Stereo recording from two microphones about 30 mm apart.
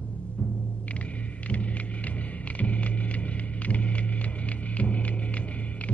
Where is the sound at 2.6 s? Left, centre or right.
Left.